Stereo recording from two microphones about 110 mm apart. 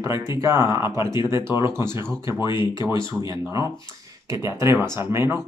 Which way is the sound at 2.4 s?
45° left (ahead or behind).